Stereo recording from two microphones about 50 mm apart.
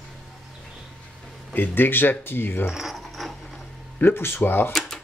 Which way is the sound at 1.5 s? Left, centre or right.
Left.